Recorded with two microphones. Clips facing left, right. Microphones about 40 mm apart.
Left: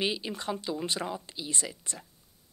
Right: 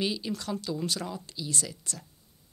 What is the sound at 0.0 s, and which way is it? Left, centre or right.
Speech, left.